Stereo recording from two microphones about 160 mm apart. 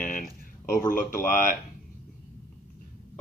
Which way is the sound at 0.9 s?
60° left (ahead or behind).